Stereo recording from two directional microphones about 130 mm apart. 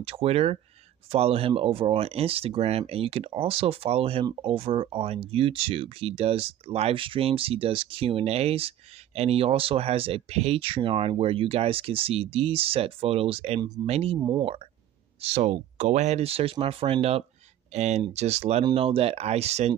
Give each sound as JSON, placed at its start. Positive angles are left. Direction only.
{"t": 0.0, "sound": "speech", "side_deg": -50}
{"t": 15.2, "sound": "speech", "side_deg": -60}
{"t": 17.7, "sound": "speech", "side_deg": -60}
{"t": 18.6, "sound": "speech", "side_deg": -40}